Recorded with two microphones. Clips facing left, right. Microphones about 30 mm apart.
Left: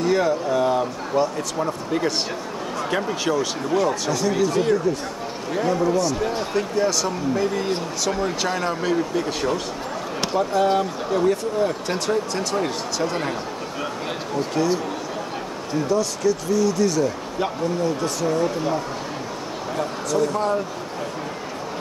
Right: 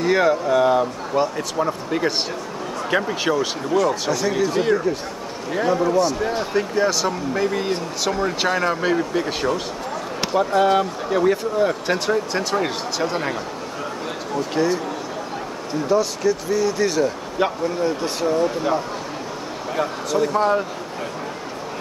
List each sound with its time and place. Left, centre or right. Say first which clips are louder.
0.0 s speech: right 2 dB; right; by 3.9 s centre
4.2 s speech: left 2 dB; centre
8.1 s speech: right 2 dB; centre
8.4 s speech: right 3 dB; centre
10.2 s a sound: right 2 dB; centre
10.8 s speech: right 2 dB; centre
14.6 s speech: right 2 dB; right
15.9 s speech: right 3 dB; centre
17.8 s speech: right 1 dB; right
19.8 s speech: right 1 dB; right